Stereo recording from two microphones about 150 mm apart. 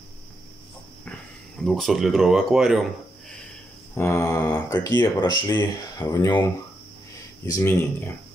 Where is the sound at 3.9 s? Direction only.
20° left (ahead or behind).